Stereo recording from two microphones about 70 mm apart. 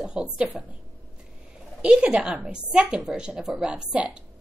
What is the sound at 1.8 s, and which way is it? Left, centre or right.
A woman's voice, centre.